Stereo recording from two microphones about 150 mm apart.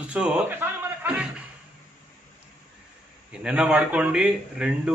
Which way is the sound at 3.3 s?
5° right (ahead or behind).